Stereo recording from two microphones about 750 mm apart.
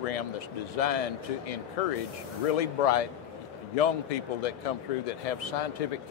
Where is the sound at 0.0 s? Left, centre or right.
Left.